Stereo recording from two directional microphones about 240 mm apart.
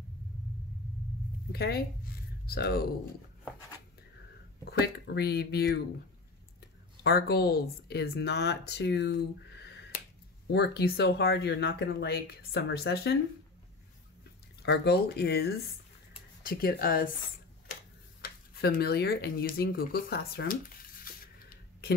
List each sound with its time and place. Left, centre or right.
1.5 s speech: left
4.6 s speech: left
14.6 s speech: left
18.2 s a sound: left